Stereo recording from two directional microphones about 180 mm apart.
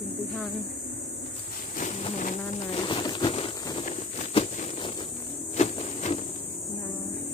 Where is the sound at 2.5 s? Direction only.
35° left (ahead or behind).